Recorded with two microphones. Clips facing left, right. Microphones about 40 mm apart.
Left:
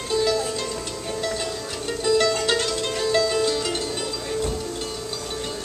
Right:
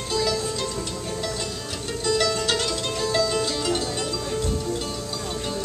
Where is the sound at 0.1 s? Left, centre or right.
Centre.